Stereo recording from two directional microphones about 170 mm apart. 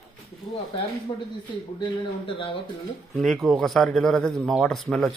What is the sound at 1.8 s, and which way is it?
Speech, 30° left (ahead or behind).